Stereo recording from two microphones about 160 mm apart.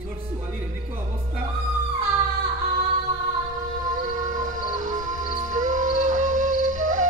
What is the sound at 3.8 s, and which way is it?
Howl, 50° right (ahead or behind).